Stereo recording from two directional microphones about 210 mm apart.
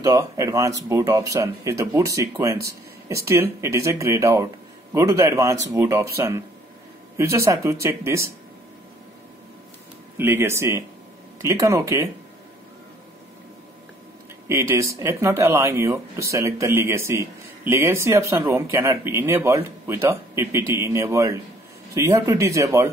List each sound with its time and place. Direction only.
0.0 s speech: 15° right (ahead or behind)
10.1 s speech: 10° right (ahead or behind)
14.5 s speech: 15° right (ahead or behind)